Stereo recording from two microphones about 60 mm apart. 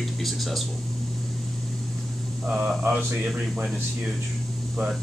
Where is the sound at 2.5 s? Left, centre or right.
Right.